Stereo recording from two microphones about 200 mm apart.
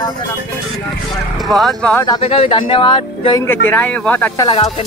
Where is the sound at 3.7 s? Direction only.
10° left (ahead or behind).